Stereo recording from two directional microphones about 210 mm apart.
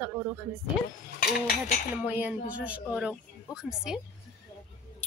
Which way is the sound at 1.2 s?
45° left (ahead or behind).